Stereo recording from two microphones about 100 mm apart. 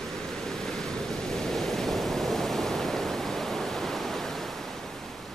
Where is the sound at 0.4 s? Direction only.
5° left (ahead or behind).